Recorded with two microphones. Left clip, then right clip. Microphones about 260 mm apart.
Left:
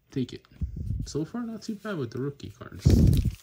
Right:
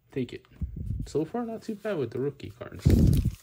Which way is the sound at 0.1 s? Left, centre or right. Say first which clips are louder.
Even; centre.